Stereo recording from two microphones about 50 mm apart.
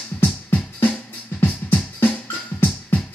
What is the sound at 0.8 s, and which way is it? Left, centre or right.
Music, left.